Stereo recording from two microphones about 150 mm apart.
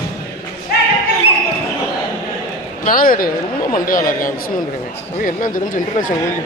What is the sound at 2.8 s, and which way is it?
Speech, 70° left (ahead or behind).